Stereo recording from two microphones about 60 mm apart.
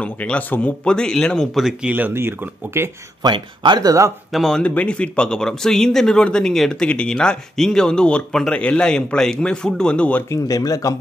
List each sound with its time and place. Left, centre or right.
0.0 s speech: left
0.8 s speech: centre
1.5 s speech: centre
2.1 s speech: right
3.8 s speech: right
4.3 s speech: centre
4.6 s speech: centre
10.3 s speech: left